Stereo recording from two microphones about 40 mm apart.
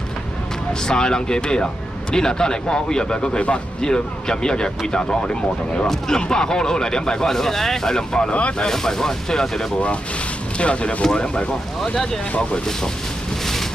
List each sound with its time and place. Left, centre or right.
0.8 s speech: centre
8.3 s speech: left
8.5 s speech: centre
10.6 s speech: left
11.1 s speech: centre